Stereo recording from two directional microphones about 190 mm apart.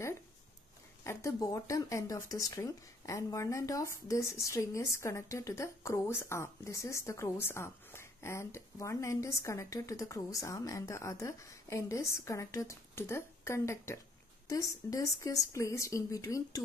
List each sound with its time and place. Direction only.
1.0 s speech: 15° left (ahead or behind)